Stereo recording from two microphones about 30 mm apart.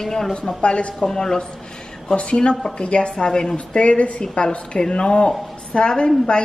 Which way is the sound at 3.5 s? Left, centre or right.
Left.